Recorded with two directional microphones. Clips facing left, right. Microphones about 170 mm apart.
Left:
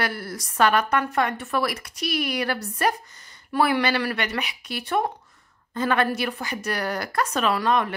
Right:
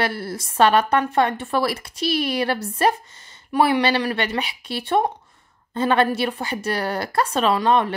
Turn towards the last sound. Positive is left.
turn(degrees=-30)  # may be behind; listen again after turning